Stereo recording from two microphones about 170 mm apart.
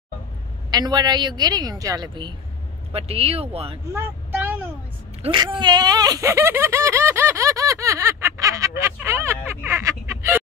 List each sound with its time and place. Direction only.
0.7 s a woman's voice: 25° right (ahead or behind)
2.9 s speech: 35° right (ahead or behind)
3.9 s vehicle: 10° right (ahead or behind)
5.2 s a sound: 25° right (ahead or behind)